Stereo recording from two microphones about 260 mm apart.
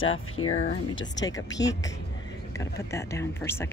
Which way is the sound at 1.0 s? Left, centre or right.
Centre.